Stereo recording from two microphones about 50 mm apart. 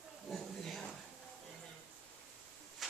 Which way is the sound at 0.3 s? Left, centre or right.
Centre.